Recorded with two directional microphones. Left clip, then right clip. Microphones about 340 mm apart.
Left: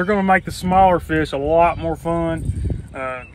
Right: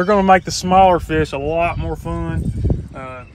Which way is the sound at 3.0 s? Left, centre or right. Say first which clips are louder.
Left 5 dB; centre.